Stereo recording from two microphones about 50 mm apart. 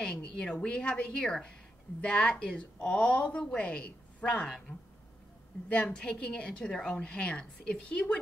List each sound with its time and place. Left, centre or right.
0.0 s a woman's voice: centre
5.7 s a woman's voice: left